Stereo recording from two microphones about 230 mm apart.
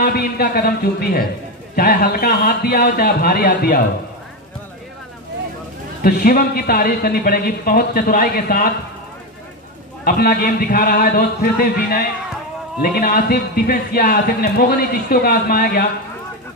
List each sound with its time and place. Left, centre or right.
0.0 s a man's voice: left
6.0 s a man's voice: left
10.0 s a man's voice: left